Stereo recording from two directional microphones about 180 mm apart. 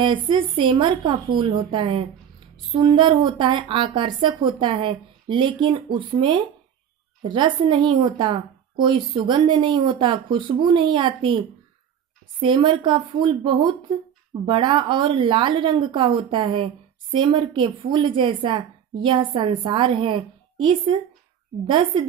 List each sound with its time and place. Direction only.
0.0 s a woman's voice: 25° right (ahead or behind)